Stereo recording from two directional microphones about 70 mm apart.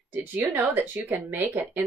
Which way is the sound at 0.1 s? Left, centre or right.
Right.